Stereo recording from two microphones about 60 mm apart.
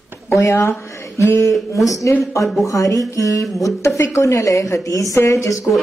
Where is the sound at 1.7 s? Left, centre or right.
Left.